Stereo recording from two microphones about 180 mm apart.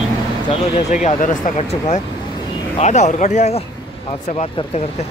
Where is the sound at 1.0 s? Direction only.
40° left (ahead or behind).